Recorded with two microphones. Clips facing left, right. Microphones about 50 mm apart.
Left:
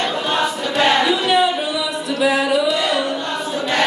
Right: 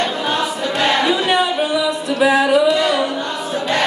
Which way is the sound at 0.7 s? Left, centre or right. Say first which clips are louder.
Left 1 dB; centre.